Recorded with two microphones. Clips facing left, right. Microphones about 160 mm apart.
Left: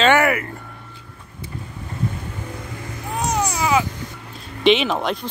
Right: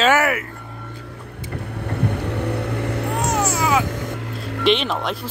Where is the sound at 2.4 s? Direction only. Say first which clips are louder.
Right 9 dB; 70° right (ahead or behind).